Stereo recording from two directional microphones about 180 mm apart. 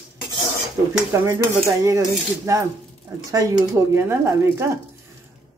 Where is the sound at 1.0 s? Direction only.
15° right (ahead or behind).